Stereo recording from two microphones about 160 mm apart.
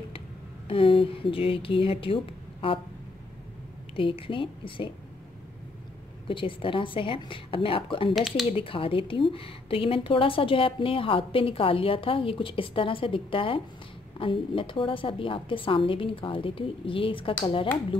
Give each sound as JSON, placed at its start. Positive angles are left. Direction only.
{"t": 0.7, "sound": "a woman's voice", "side_deg": 35}
{"t": 3.9, "sound": "a woman's voice", "side_deg": 35}
{"t": 6.2, "sound": "a woman's voice", "side_deg": 35}
{"t": 8.1, "sound": "speech", "side_deg": 0}
{"t": 8.5, "sound": "a woman's voice", "side_deg": 35}